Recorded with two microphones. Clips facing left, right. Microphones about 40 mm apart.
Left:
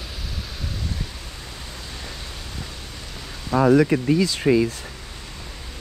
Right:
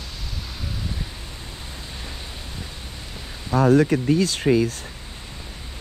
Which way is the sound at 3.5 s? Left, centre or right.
Left.